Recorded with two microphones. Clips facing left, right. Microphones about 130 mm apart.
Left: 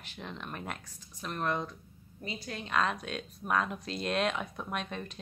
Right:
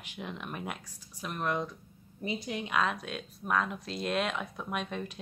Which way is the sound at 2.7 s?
Centre (ahead or behind).